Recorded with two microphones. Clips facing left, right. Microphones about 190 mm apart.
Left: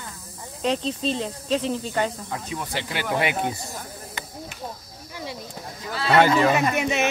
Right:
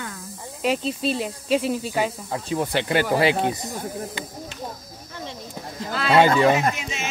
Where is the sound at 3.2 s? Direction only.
25° right (ahead or behind).